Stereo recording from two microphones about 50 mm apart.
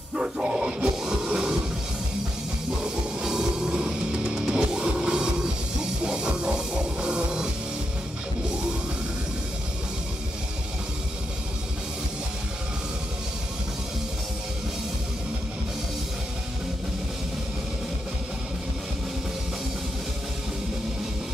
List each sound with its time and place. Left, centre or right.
0.1 s music: centre
2.8 s music: centre